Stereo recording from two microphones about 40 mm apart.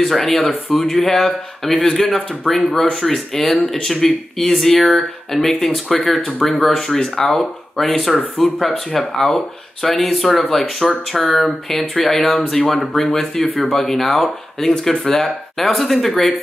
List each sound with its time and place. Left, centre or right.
0.0 s speech: centre
7.0 s speech: centre